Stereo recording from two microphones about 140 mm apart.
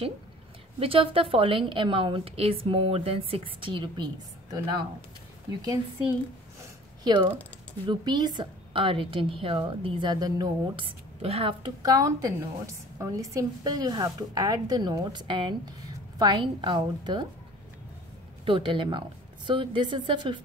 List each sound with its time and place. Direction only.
0.7 s a woman's voice: 40° right (ahead or behind)
6.6 s a sound: 30° right (ahead or behind)
7.8 s a woman's voice: 30° right (ahead or behind)
11.8 s a woman's voice: 25° right (ahead or behind)
18.4 s a woman's voice: 35° right (ahead or behind)